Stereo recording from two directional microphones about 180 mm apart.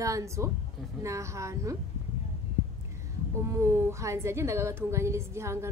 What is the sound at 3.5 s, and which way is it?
A woman's voice, 15° right (ahead or behind).